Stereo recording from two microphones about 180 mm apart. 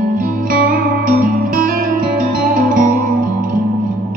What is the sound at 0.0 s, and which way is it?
Music, 50° right (ahead or behind).